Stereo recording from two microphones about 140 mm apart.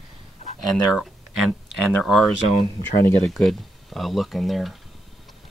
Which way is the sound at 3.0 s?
15° left (ahead or behind).